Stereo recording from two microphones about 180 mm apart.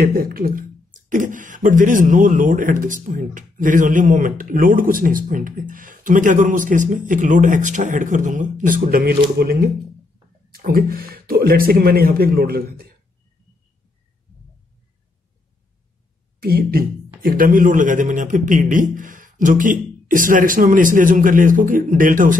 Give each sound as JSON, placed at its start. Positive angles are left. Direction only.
{"t": 0.0, "sound": "a man's voice", "side_deg": -55}
{"t": 16.3, "sound": "speech", "side_deg": -55}